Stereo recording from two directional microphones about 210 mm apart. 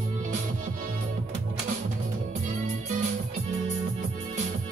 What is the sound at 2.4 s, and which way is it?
Music, 35° right (ahead or behind).